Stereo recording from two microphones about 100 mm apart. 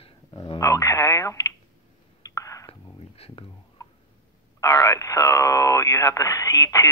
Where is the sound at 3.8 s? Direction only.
30° left (ahead or behind).